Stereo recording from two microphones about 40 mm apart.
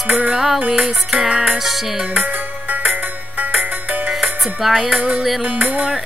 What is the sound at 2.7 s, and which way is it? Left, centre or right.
Music, right.